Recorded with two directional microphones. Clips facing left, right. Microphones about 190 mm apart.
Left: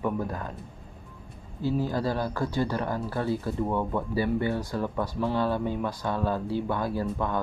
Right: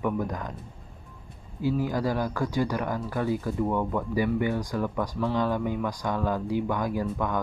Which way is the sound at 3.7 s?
15° left (ahead or behind).